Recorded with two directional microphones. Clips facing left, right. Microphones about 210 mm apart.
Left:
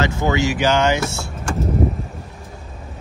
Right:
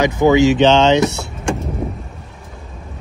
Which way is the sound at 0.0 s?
20° right (ahead or behind).